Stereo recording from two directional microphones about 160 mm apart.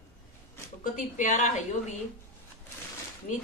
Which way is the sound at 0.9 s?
55° left (ahead or behind).